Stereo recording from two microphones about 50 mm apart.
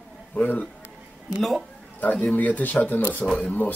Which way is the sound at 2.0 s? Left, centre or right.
Left.